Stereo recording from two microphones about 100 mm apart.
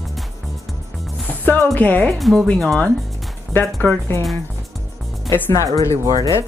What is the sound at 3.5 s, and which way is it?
Speech, 20° left (ahead or behind).